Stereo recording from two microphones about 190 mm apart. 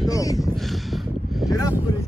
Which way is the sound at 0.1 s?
20° left (ahead or behind).